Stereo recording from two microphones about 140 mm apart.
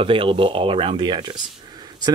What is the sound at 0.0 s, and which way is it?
Speech, 40° right (ahead or behind).